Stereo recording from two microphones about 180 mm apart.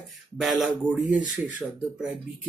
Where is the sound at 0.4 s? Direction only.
Centre (ahead or behind).